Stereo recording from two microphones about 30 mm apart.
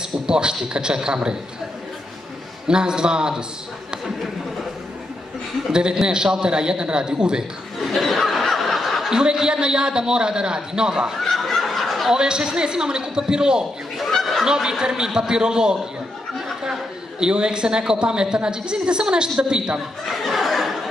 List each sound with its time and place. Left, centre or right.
0.3 s a woman's voice: right
2.7 s a woman's voice: right
5.7 s a woman's voice: right
7.9 s snicker: centre
9.1 s a woman's voice: right
11.1 s snicker: centre
12.1 s a woman's voice: right
13.9 s goose: centre
14.4 s a woman's voice: centre
17.2 s a woman's voice: right
20.1 s chuckle: centre